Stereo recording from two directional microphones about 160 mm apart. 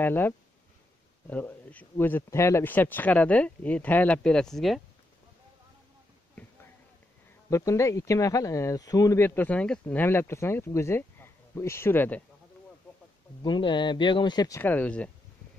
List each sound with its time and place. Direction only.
0.0 s speech: 15° left (ahead or behind)
7.4 s speech: 20° left (ahead or behind)
13.4 s speech: 30° left (ahead or behind)
14.6 s speech: 10° left (ahead or behind)